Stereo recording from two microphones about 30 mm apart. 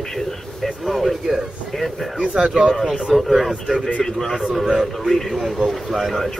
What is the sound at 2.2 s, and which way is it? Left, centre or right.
Speech, right.